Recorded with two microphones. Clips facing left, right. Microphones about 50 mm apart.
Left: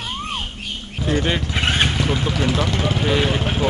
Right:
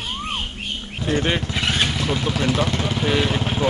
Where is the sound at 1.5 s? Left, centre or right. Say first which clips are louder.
Left 2 dB; left.